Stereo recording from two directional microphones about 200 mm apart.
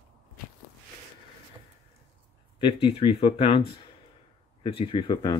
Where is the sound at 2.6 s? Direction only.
25° left (ahead or behind).